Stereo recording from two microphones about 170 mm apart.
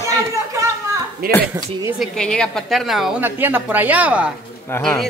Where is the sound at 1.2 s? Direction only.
60° right (ahead or behind).